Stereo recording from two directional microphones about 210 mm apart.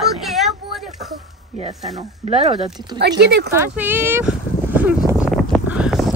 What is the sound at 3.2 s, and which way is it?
Speech, 50° right (ahead or behind).